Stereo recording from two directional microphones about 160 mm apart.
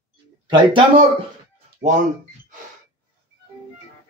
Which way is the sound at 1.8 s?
50° right (ahead or behind).